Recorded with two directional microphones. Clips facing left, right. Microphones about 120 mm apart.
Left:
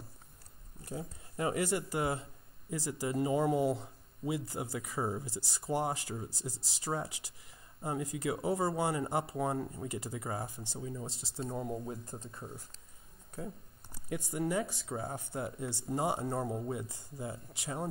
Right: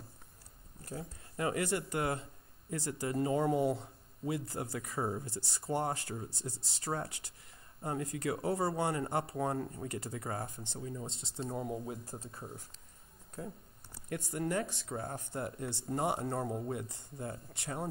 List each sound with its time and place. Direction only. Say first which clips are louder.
0.8 s speech: left 2 dB; 20° left (ahead or behind)
1.6 s speech: left 1 dB; 5° left (ahead or behind)
14.0 s speech: left 2 dB; 10° left (ahead or behind)